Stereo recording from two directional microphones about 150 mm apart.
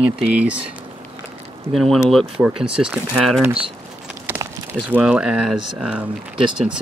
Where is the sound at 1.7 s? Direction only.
Centre (ahead or behind).